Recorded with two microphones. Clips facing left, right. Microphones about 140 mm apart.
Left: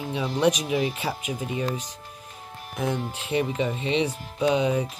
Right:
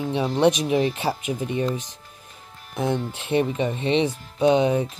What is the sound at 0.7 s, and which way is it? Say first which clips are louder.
Speech: right 4 dB; 35° right (ahead or behind).